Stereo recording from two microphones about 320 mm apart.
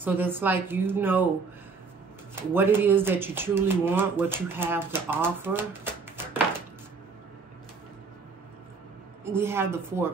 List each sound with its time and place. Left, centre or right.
0.0 s speech: centre
2.5 s speech: centre
9.2 s speech: centre